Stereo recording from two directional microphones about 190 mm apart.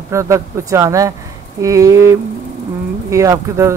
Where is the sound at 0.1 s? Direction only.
15° right (ahead or behind).